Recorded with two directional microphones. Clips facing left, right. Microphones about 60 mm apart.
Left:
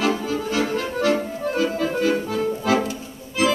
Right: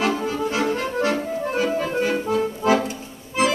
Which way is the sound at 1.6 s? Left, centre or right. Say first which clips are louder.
Left 1 dB; right.